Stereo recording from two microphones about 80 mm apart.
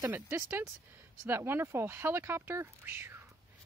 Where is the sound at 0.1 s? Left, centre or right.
Right.